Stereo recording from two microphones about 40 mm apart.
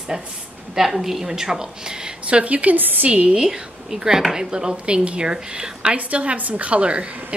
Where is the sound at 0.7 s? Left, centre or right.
Centre.